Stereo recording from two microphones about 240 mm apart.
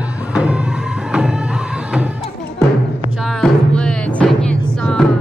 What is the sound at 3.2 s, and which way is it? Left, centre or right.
Music, centre.